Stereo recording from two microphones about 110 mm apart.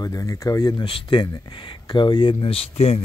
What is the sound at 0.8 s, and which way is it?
Speech, 45° left (ahead or behind).